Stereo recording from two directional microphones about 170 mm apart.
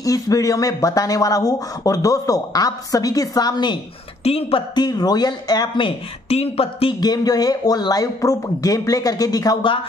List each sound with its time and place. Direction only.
0.0 s speech: 20° left (ahead or behind)
4.2 s speech: 35° left (ahead or behind)